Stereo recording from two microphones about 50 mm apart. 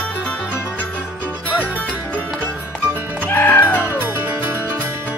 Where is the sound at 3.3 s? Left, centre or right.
Left.